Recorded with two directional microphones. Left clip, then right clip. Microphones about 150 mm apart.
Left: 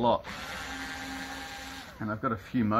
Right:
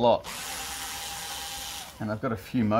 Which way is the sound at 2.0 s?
45° right (ahead or behind).